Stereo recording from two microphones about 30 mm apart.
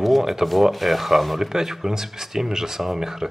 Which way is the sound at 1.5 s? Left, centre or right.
Centre.